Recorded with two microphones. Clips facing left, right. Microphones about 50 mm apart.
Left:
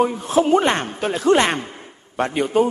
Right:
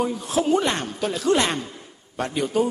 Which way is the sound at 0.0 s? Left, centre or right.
Left.